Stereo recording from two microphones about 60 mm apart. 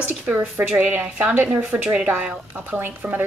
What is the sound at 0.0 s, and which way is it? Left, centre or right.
A woman's voice, right.